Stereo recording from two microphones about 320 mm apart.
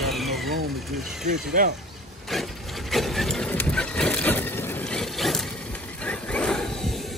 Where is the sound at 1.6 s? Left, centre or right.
Right.